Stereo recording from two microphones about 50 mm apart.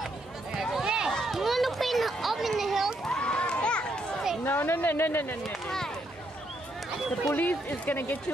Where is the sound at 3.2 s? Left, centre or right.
Left.